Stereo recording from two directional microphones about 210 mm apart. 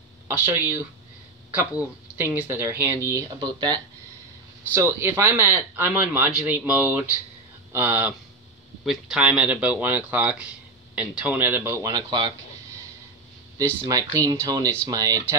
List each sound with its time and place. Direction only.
0.3 s speech: 10° right (ahead or behind)
13.6 s speech: 15° right (ahead or behind)